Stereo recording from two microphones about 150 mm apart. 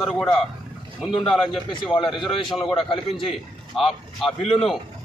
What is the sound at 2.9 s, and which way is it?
Speech, 35° left (ahead or behind).